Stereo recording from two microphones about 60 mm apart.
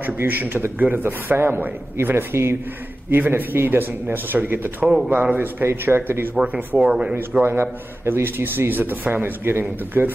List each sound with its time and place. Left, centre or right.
0.0 s a man's voice: right
4.8 s speech: centre
5.1 s a man's voice: right
6.3 s speech: right
7.4 s a man's voice: right